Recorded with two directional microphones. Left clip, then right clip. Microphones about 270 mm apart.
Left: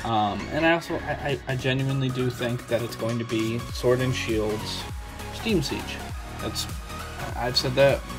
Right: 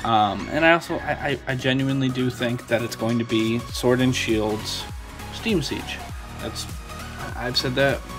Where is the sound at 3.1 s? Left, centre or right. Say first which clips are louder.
Right 7 dB; right.